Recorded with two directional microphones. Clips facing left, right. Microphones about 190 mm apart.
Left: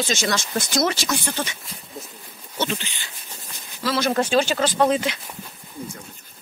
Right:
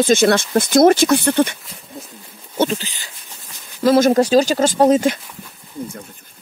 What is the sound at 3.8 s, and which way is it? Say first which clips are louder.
Speech: right 9 dB; 45° right (ahead or behind).